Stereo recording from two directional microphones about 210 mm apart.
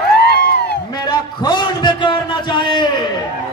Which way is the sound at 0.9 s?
20° left (ahead or behind).